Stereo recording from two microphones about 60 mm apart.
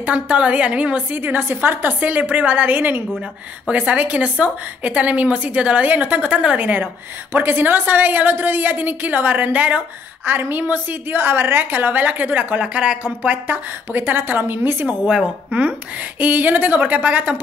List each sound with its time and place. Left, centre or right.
0.0 s a woman's voice: right
1.2 s a woman's voice: right
15.0 s a woman's voice: centre
15.6 s a woman's voice: right